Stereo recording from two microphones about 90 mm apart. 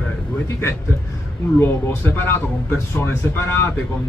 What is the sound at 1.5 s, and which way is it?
Speech, 25° left (ahead or behind).